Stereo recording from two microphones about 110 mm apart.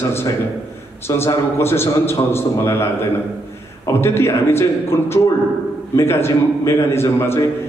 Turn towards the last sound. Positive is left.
turn(degrees=25)  # may be behind; listen again after turning